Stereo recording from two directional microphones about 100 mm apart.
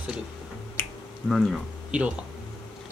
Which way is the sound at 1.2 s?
Centre (ahead or behind).